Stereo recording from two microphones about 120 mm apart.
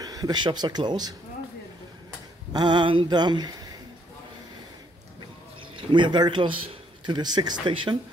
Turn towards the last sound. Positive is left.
turn(degrees=-45)  # may be behind; listen again after turning